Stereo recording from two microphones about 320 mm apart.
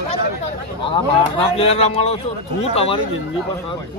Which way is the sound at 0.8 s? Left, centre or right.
Centre.